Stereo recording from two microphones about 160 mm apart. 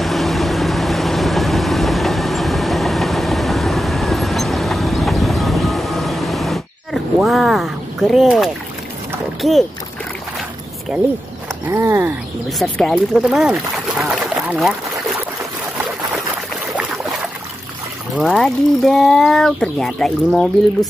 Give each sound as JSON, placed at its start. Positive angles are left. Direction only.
{"t": 0.0, "sound": "vehicle", "side_deg": 0}
{"t": 9.4, "sound": "speech", "side_deg": 0}
{"t": 11.7, "sound": "speech", "side_deg": -15}
{"t": 12.4, "sound": "speech", "side_deg": 0}
{"t": 16.7, "sound": "boat", "side_deg": 0}
{"t": 18.1, "sound": "speech", "side_deg": 0}